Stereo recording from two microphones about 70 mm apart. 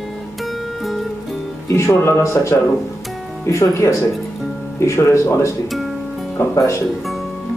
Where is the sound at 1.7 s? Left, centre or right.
Left.